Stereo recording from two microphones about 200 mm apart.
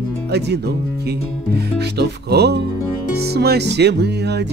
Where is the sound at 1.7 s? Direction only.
55° right (ahead or behind).